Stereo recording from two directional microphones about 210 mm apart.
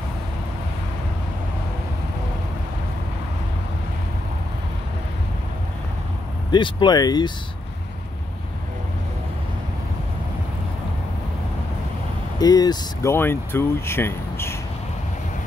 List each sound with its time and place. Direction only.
6.5 s speech: 20° left (ahead or behind)
12.4 s speech: 20° left (ahead or behind)